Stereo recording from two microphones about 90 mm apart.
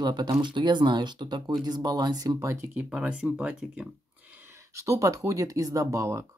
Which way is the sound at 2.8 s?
10° right (ahead or behind).